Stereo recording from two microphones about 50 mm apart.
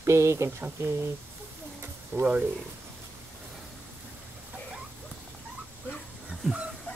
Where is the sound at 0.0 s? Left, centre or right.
Right.